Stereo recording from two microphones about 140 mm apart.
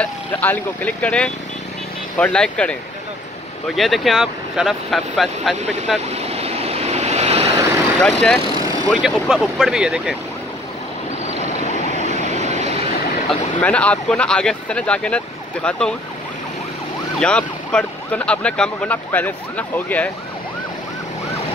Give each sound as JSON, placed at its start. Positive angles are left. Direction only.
{"t": 0.0, "sound": "speech", "side_deg": 10}
{"t": 3.7, "sound": "speech", "side_deg": 0}
{"t": 5.6, "sound": "speech", "side_deg": -55}
{"t": 6.0, "sound": "waves", "side_deg": -50}
{"t": 8.0, "sound": "speech", "side_deg": 5}
{"t": 11.9, "sound": "vehicle", "side_deg": -55}
{"t": 13.3, "sound": "speech", "side_deg": 10}
{"t": 17.2, "sound": "speech", "side_deg": 5}